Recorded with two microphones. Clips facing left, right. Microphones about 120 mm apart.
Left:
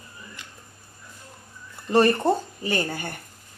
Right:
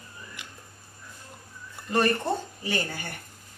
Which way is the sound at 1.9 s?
35° left (ahead or behind).